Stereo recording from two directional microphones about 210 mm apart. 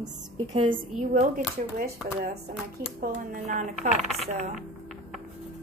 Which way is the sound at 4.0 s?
Centre (ahead or behind).